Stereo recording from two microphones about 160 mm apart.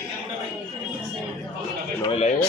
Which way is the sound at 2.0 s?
40° left (ahead or behind).